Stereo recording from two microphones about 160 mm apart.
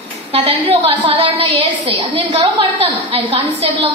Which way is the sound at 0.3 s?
35° right (ahead or behind).